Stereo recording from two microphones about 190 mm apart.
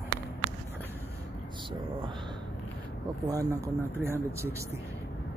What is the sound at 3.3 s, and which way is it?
Speech, 15° right (ahead or behind).